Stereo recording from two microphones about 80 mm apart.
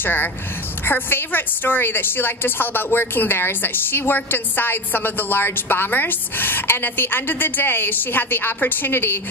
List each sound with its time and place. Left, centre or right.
0.0 s a woman's voice: left